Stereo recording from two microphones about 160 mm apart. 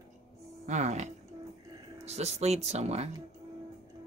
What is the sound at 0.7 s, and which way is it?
Speech, 45° right (ahead or behind).